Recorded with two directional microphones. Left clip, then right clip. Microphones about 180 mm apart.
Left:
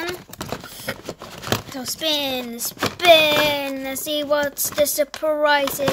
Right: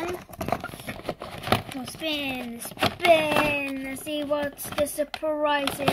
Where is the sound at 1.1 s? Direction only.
5° left (ahead or behind).